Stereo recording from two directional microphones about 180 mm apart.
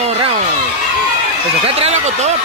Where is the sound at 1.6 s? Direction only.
35° right (ahead or behind).